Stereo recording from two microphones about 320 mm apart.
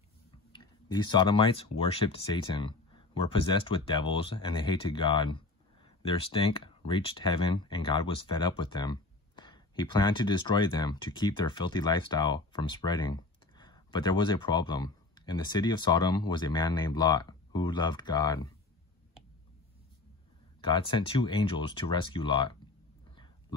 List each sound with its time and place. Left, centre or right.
0.5 s speech: centre
20.6 s speech: centre